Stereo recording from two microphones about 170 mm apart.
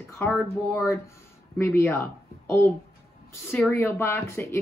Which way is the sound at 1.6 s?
15° left (ahead or behind).